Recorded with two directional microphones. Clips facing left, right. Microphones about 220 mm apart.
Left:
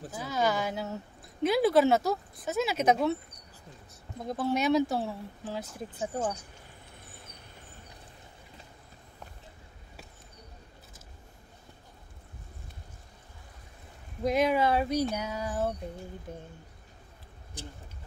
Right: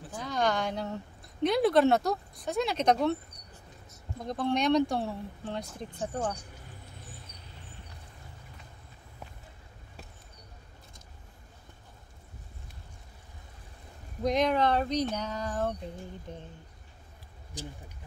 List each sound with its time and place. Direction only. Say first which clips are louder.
0.1 s a woman's voice: even; 5° left (ahead or behind)
4.3 s a woman's voice: even; 5° left (ahead or behind)
14.2 s speech: even; 5° left (ahead or behind)
17.6 s speech: right 3 dB; 55° left (ahead or behind)